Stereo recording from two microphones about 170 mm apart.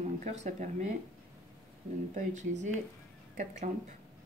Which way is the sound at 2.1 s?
45° right (ahead or behind).